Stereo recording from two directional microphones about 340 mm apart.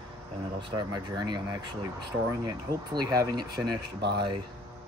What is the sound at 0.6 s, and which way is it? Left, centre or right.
Speech, centre.